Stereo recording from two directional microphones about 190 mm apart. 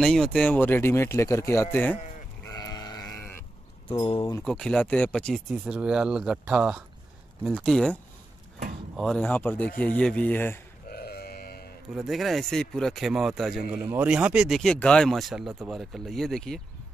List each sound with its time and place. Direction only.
0.0 s speech: 5° left (ahead or behind)
2.4 s sheep: 20° left (ahead or behind)
3.8 s speech: 30° left (ahead or behind)
4.5 s speech: 5° left (ahead or behind)
10.9 s livestock: 55° left (ahead or behind)
11.9 s speech: centre (ahead or behind)